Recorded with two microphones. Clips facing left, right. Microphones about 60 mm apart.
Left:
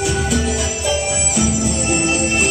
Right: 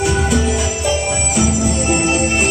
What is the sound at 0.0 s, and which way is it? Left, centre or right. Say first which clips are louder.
Music: right 3 dB; right.